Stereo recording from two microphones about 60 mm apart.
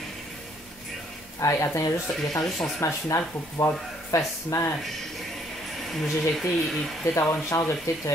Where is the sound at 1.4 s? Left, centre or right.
Left.